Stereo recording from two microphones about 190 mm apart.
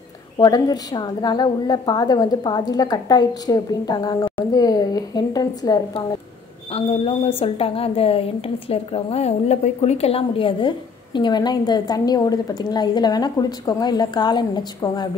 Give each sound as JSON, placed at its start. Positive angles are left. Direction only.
{"t": 0.4, "sound": "a woman's voice", "side_deg": 20}
{"t": 6.7, "sound": "a woman's voice", "side_deg": 30}